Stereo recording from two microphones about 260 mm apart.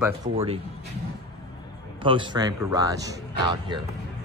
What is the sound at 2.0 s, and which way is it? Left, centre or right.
A man's voice, centre.